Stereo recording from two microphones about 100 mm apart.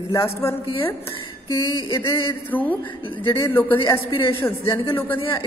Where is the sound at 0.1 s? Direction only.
30° left (ahead or behind).